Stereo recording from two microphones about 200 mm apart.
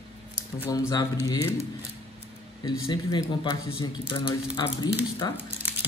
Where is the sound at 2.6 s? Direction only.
20° left (ahead or behind).